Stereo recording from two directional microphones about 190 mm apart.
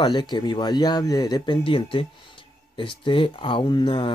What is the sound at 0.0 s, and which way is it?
Speech, 20° left (ahead or behind).